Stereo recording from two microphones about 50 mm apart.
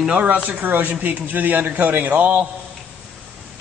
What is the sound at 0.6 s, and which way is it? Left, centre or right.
A man's voice, right.